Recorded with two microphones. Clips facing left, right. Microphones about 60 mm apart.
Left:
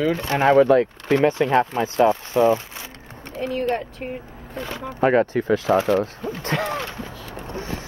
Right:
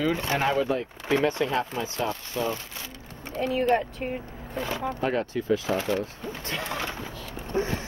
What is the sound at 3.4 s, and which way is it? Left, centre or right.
Speech, centre.